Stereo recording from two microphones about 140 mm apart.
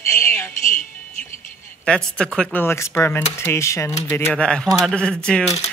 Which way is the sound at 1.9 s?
5° left (ahead or behind).